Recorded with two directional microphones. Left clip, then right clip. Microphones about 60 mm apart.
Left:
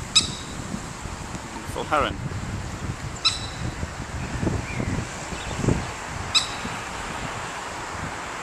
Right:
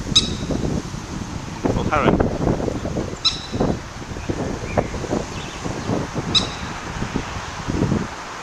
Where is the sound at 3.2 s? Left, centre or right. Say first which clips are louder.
Right 2 dB; centre.